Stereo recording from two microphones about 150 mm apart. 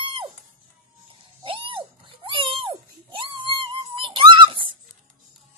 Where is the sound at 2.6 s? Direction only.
35° right (ahead or behind).